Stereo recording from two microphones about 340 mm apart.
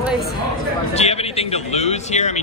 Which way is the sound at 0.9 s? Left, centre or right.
Centre.